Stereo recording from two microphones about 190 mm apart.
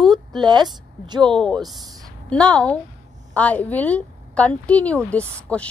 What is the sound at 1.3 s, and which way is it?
A woman's voice, 5° left (ahead or behind).